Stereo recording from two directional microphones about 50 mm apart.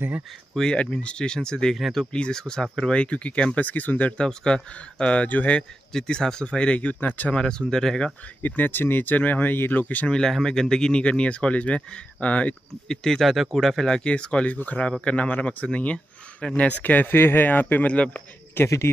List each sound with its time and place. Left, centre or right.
0.7 s speech: left
4.2 s speech: centre; by 5.6 s left
5.6 s speech: centre; by 7.3 s left
7.3 s speech: centre
8.4 s speech: left
10.0 s speech: centre
12.8 s speech: centre
13.9 s speech: left
16.8 s speech: left
17.9 s speech: left
18.6 s speech: left